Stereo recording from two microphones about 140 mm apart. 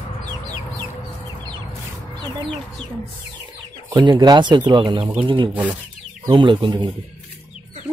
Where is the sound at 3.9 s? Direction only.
30° right (ahead or behind).